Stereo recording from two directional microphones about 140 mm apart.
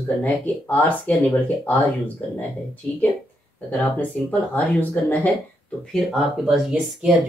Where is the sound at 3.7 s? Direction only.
10° left (ahead or behind).